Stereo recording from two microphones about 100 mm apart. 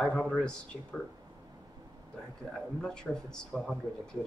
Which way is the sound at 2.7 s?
5° left (ahead or behind).